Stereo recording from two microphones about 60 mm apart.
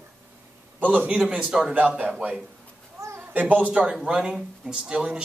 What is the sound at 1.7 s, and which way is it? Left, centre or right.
Speech, right.